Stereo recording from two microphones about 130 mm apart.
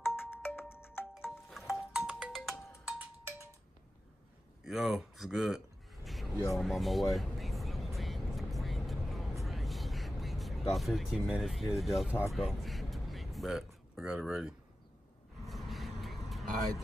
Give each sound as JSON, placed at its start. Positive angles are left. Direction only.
{"t": 0.0, "sound": "music", "side_deg": 15}
{"t": 1.7, "sound": "music", "side_deg": -5}
{"t": 4.6, "sound": "speech", "side_deg": 0}
{"t": 6.0, "sound": "a sound", "side_deg": 0}
{"t": 6.5, "sound": "vehicle", "side_deg": 0}
{"t": 10.7, "sound": "speech", "side_deg": 0}
{"t": 12.3, "sound": "a sound", "side_deg": 0}
{"t": 15.4, "sound": "vehicle", "side_deg": 0}